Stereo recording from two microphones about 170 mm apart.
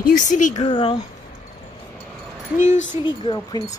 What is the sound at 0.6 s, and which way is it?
Speech, 35° left (ahead or behind).